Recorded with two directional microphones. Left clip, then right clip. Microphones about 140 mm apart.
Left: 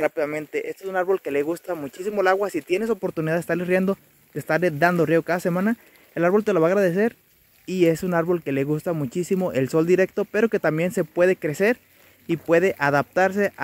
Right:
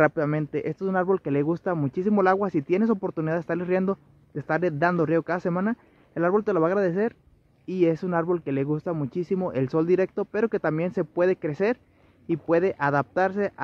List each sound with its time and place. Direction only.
0.0 s speech: 15° left (ahead or behind)